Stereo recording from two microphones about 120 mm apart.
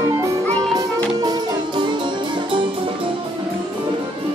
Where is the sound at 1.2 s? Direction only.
40° right (ahead or behind).